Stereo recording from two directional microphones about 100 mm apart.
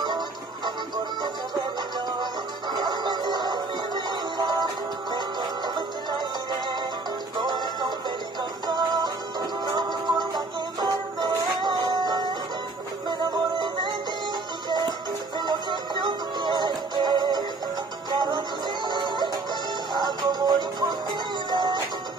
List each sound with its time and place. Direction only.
0.7 s music: 50° right (ahead or behind)
14.7 s music: 45° right (ahead or behind)
18.9 s music: 50° right (ahead or behind)